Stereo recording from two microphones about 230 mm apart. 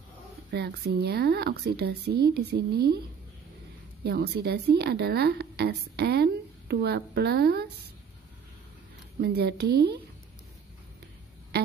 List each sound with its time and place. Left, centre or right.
0.5 s a woman's voice: right
4.0 s a woman's voice: right
9.2 s a woman's voice: right